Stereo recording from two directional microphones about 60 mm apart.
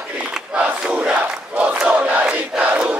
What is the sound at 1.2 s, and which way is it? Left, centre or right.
Crowd, right.